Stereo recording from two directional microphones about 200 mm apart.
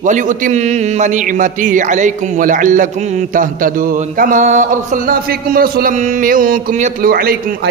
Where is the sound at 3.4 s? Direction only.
45° right (ahead or behind).